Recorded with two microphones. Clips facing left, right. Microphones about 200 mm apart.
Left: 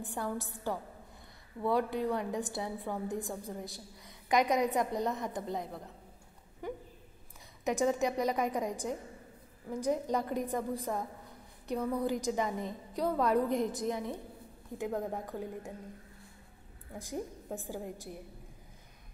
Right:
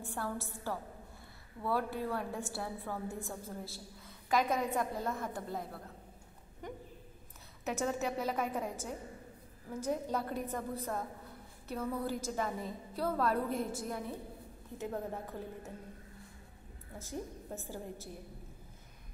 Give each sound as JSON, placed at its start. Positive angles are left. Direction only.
{"t": 0.0, "sound": "a woman's voice", "side_deg": 15}
{"t": 7.6, "sound": "a woman's voice", "side_deg": 15}
{"t": 17.0, "sound": "a woman's voice", "side_deg": 15}